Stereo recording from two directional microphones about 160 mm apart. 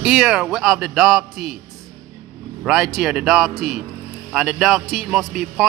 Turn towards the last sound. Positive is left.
turn(degrees=0)  # may be behind; listen again after turning